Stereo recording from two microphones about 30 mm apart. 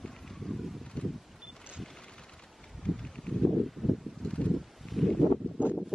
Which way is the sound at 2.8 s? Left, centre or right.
Centre.